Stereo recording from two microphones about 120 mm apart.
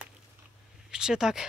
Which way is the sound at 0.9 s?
5° right (ahead or behind).